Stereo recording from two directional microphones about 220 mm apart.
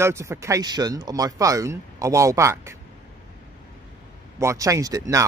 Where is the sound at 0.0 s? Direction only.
10° right (ahead or behind).